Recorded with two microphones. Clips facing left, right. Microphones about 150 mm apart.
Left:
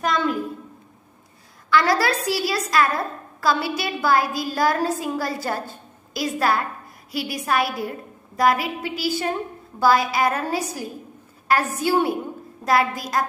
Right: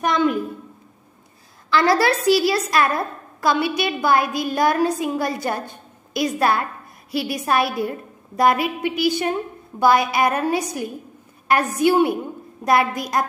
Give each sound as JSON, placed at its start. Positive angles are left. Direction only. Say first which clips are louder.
{"t": 0.0, "sound": "a woman's voice", "louder": "right 3 dB", "side_deg": -20}
{"t": 1.7, "sound": "a woman's voice", "louder": "right 2 dB", "side_deg": -25}